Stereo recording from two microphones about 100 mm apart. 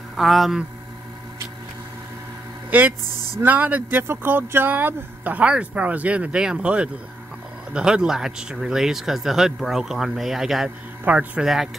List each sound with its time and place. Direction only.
0.1 s speech: centre (ahead or behind)
2.7 s speech: 15° right (ahead or behind)